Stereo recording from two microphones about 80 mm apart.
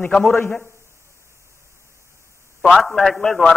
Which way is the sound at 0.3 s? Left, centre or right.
Left.